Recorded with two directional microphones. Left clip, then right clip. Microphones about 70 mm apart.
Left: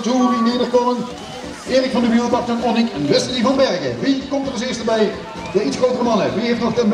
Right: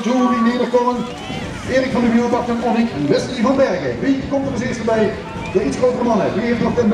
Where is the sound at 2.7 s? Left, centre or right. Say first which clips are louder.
Left 1 dB; left.